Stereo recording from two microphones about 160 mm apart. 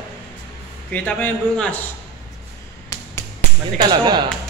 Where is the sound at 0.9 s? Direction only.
10° left (ahead or behind).